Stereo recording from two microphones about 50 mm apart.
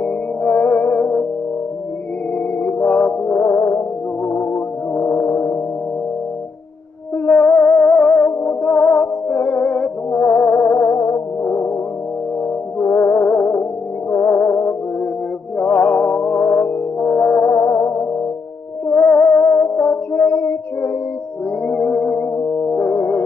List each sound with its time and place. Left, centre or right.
0.0 s music: left
2.6 s music: left
4.9 s music: left
5.2 s gong: left
7.2 s music: left
11.4 s music: left
12.7 s music: left
14.1 s music: left
17.0 s music: centre
17.6 s music: left
18.9 s music: left
19.3 s music: left
21.6 s a sound: left
22.7 s music: left